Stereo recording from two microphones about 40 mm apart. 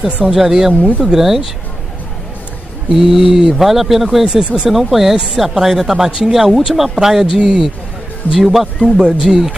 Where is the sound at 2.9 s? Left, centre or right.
Centre.